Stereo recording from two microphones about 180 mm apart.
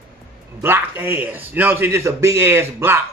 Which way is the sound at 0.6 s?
10° right (ahead or behind).